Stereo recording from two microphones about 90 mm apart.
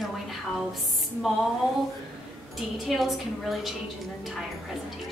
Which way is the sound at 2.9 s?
Centre (ahead or behind).